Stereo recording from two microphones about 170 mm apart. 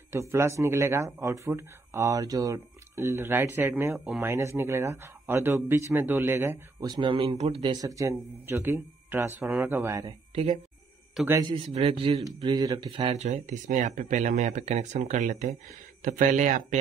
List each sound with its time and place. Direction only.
0.1 s speech: 15° right (ahead or behind)
11.4 s speech: 30° right (ahead or behind)
12.4 s speech: 25° right (ahead or behind); by 16.6 s 50° right (ahead or behind)